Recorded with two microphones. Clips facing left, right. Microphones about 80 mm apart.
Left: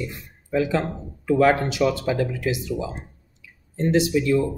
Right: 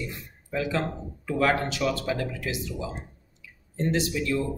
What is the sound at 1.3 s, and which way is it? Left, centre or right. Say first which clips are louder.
Speech: left 6 dB; centre.